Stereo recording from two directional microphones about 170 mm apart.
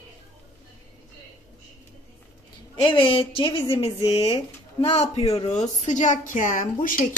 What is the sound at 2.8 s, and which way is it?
A woman's voice, 30° left (ahead or behind).